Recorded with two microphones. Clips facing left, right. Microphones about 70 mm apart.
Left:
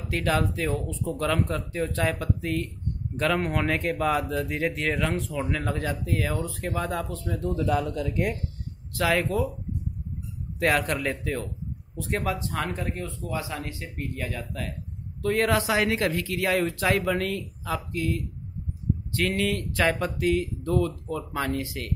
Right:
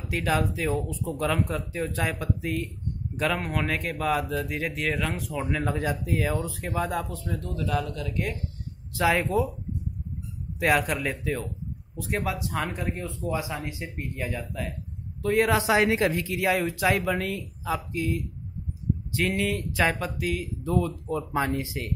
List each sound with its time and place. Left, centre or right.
0.1 s speech: centre
7.5 s speech: centre
8.9 s speech: centre
10.6 s speech: centre
13.2 s speech: centre
16.5 s speech: centre
19.9 s speech: centre
21.3 s speech: right